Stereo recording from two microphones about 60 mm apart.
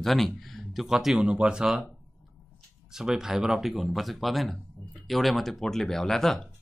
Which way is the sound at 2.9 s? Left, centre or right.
Centre.